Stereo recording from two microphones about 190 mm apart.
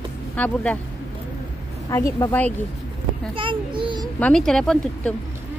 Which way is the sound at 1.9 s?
15° left (ahead or behind).